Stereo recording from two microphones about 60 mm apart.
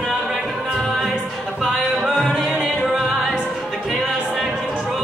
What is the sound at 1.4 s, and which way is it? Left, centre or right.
Music, centre.